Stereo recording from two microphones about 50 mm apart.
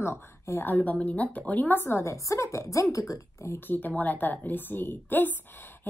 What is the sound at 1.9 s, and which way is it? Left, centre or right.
A woman's voice, left.